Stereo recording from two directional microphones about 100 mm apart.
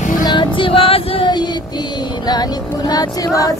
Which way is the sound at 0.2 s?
50° left (ahead or behind).